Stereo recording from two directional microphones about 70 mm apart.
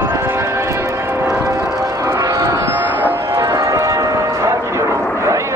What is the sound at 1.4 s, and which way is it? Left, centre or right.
Music, right.